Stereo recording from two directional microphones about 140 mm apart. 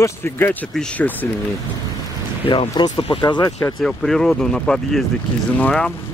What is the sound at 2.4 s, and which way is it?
Speech, 35° left (ahead or behind).